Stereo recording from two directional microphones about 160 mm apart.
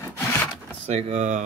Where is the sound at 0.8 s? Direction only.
40° right (ahead or behind).